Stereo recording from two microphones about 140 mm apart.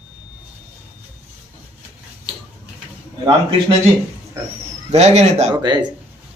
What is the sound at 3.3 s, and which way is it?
Speech, 35° right (ahead or behind).